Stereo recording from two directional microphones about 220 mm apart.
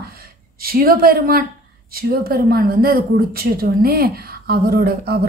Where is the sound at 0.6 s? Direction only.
40° right (ahead or behind).